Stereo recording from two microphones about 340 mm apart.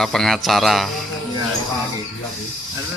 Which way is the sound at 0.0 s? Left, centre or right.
Centre.